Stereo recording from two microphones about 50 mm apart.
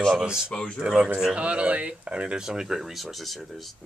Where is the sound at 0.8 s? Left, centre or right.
Centre.